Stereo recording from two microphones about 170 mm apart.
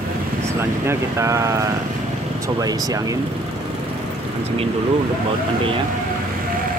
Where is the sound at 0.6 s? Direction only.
15° right (ahead or behind).